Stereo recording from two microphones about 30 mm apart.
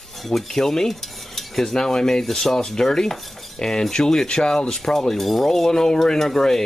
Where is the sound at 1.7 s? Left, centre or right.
Centre.